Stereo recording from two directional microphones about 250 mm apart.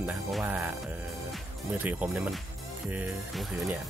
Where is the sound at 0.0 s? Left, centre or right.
Centre.